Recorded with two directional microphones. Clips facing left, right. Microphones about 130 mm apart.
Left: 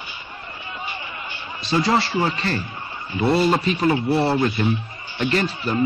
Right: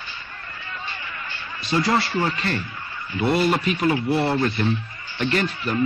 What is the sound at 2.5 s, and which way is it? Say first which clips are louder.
Speech: left 1 dB; 35° left (ahead or behind).